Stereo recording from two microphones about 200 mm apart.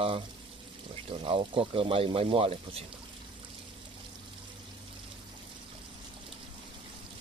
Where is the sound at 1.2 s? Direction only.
25° right (ahead or behind).